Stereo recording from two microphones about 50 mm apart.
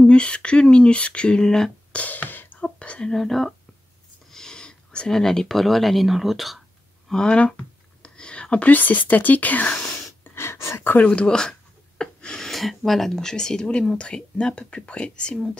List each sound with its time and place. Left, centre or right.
0.0 s speech: left
1.9 s music: left
2.6 s whispering: left
3.1 s speech: centre
4.3 s a sound: centre
5.2 s speech: centre
7.1 s speech: centre
7.3 s a sound: left
8.7 s speech: left
10.2 s a sound: left
10.8 s speech: left
11.1 s speech: centre
12.0 s a sound: centre
12.4 s speech: centre